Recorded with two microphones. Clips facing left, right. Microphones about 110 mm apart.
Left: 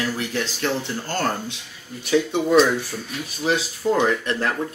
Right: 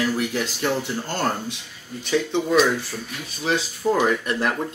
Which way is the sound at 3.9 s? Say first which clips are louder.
Even; 10° right (ahead or behind).